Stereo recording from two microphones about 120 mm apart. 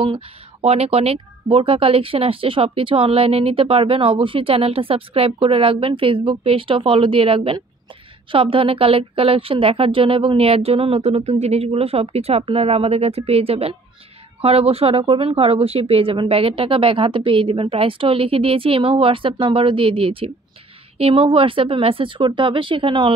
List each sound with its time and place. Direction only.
0.0 s a woman's voice: 50° right (ahead or behind)